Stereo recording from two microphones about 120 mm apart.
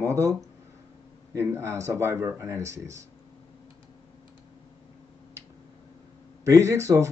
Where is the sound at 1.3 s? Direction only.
25° right (ahead or behind).